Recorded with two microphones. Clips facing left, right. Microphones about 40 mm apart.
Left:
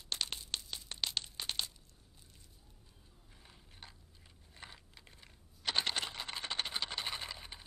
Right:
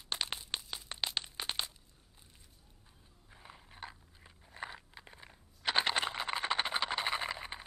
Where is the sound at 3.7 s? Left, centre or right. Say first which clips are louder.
Right 9 dB; right.